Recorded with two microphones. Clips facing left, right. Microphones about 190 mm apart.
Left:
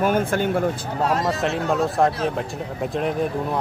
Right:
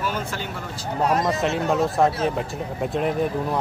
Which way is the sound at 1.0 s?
20° right (ahead or behind).